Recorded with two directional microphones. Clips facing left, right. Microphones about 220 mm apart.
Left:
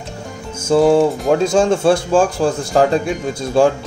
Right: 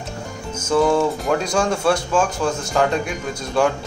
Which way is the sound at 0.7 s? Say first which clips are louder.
Left 5 dB; 30° left (ahead or behind).